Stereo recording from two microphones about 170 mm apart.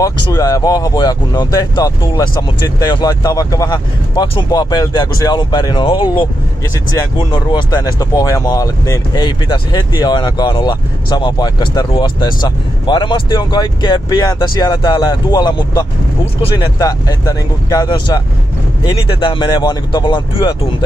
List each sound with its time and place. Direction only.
0.0 s speech: 20° left (ahead or behind)